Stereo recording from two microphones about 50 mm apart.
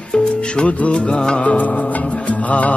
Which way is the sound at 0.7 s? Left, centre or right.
Left.